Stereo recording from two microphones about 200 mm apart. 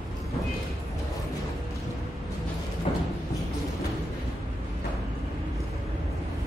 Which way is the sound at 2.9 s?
30° left (ahead or behind).